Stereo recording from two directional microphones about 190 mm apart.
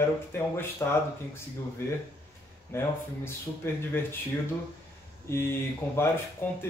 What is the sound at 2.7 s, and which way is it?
Speech, 15° left (ahead or behind).